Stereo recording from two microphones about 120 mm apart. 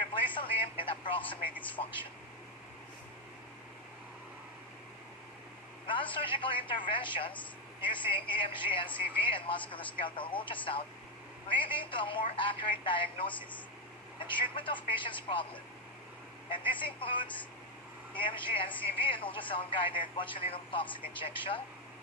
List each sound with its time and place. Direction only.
0.1 s speech: 45° left (ahead or behind)
1.8 s speech: 90° left
5.9 s speech: 45° left (ahead or behind)